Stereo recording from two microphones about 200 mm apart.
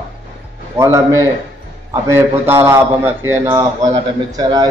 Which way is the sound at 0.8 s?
15° right (ahead or behind).